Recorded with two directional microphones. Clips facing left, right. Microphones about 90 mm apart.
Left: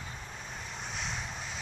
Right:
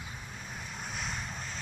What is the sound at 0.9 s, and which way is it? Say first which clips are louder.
Vehicle: even; centre (ahead or behind).